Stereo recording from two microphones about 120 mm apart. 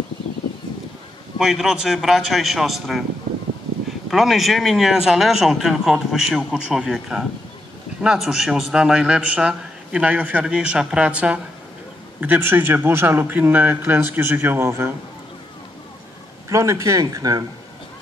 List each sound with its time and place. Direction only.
1.4 s speech: 5° right (ahead or behind)
4.1 s a man's voice: centre (ahead or behind); by 15.0 s 20° right (ahead or behind)
16.4 s speech: 25° right (ahead or behind)